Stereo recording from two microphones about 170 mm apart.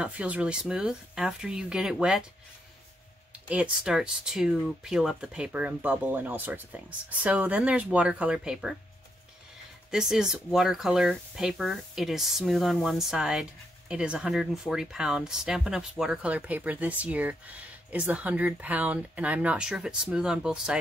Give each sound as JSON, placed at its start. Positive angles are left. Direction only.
{"t": 0.0, "sound": "speech", "side_deg": -5}
{"t": 3.4, "sound": "speech", "side_deg": -5}
{"t": 9.8, "sound": "speech", "side_deg": -5}